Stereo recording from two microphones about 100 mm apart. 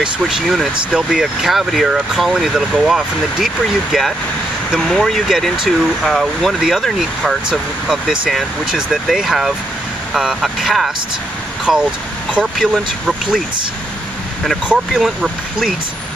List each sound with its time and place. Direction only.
0.0 s speech: centre (ahead or behind)
14.7 s speech: 5° right (ahead or behind)